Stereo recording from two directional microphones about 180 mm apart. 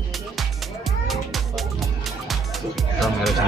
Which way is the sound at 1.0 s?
Centre (ahead or behind).